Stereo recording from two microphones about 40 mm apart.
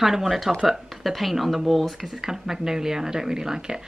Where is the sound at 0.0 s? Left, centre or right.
Centre.